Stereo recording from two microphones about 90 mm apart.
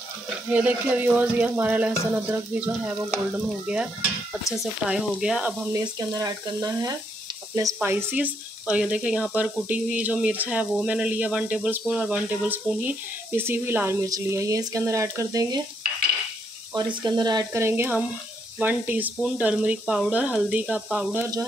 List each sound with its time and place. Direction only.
0.5 s speech: 15° right (ahead or behind)
5.7 s frying: 35° right (ahead or behind)
7.5 s speech: 30° right (ahead or behind)
14.0 s frying: 40° right (ahead or behind)
16.7 s speech: 50° right (ahead or behind)
17.5 s speech: 30° right (ahead or behind)